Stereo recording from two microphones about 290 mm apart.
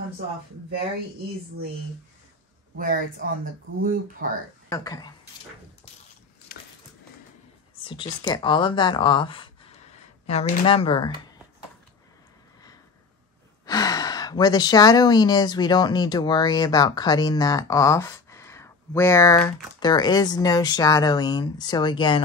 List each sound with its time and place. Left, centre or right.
2.8 s speech: right
4.6 s speech: centre
6.5 s a sound: left
7.8 s speech: centre
13.7 s speech: centre